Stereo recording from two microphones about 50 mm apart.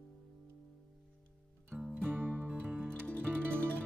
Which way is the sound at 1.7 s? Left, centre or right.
Centre.